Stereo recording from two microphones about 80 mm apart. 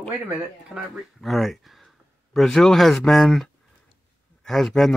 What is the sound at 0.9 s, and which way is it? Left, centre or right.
A man's voice, centre.